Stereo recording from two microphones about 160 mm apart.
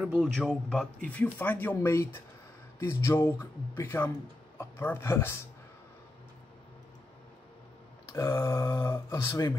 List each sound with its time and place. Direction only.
0.0 s a man's voice: 10° right (ahead or behind)
0.3 s speech: 5° left (ahead or behind)
8.1 s speech: 15° left (ahead or behind)